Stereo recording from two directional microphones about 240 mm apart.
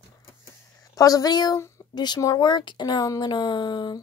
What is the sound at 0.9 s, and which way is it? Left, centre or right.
Speech, centre.